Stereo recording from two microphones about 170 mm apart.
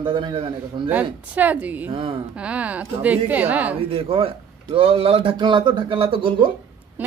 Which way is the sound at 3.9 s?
35° right (ahead or behind).